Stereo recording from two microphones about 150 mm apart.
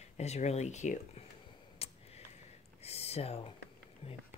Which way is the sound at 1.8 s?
40° left (ahead or behind).